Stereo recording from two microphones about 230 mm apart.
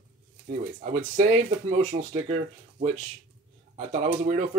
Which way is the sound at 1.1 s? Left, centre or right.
Right.